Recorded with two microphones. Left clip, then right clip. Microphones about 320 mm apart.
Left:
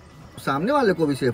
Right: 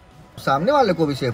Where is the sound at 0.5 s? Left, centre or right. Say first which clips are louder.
Right 4 dB; centre.